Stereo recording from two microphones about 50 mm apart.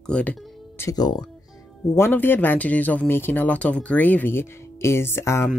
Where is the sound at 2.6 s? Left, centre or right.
Left.